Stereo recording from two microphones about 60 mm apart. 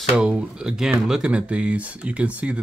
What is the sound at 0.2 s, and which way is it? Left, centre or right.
Speech, centre.